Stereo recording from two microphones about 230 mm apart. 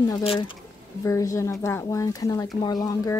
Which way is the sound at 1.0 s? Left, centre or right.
Centre.